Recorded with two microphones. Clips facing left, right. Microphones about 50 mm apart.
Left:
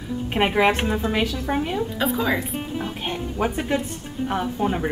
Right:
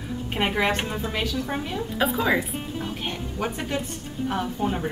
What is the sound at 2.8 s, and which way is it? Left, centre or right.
A woman's voice, centre.